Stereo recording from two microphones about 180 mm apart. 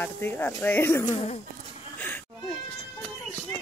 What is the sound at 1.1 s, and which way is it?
Speech, 35° left (ahead or behind).